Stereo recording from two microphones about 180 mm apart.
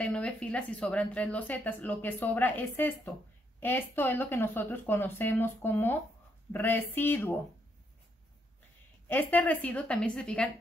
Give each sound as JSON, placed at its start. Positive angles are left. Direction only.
{"t": 0.0, "sound": "speech", "side_deg": 5}
{"t": 9.0, "sound": "speech", "side_deg": 10}